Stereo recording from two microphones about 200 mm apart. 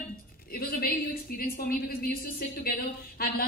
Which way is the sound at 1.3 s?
50° left (ahead or behind).